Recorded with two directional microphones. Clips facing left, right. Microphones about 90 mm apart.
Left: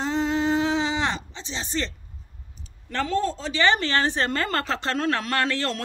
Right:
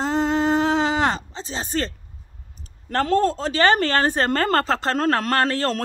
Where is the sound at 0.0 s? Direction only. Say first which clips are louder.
Right 3 dB; 40° right (ahead or behind).